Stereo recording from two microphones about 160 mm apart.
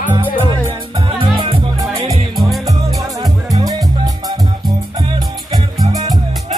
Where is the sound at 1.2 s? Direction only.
30° right (ahead or behind).